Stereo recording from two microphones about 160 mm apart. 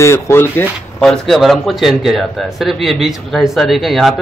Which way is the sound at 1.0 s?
Centre (ahead or behind).